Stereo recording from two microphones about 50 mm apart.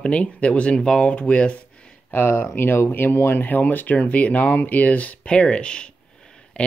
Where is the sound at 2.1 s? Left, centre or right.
Left.